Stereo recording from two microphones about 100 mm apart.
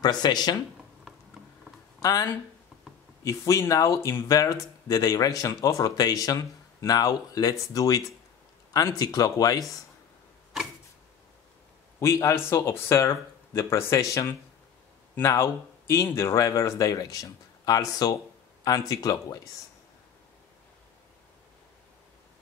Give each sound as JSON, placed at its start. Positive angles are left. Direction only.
{"t": 0.0, "sound": "speech", "side_deg": 45}
{"t": 2.0, "sound": "a sound", "side_deg": 35}
{"t": 3.3, "sound": "speech", "side_deg": 30}
{"t": 12.0, "sound": "speech", "side_deg": 30}